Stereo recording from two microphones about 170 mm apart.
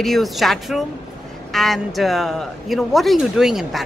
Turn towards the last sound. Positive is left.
turn(degrees=0)  # may be behind; listen again after turning